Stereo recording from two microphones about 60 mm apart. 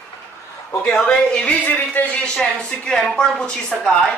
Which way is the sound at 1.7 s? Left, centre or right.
Left.